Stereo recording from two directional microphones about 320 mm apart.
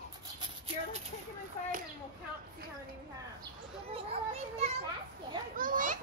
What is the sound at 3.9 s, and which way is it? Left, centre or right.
Children playing, centre.